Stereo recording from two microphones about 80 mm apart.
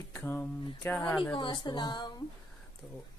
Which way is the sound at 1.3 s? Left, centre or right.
Left.